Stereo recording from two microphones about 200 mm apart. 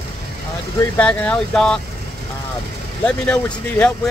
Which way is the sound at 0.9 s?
5° left (ahead or behind).